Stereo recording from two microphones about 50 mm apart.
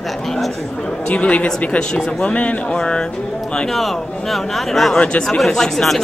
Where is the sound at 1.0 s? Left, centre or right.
Left.